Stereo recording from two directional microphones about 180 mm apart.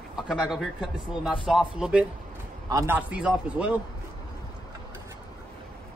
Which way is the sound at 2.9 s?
5° right (ahead or behind).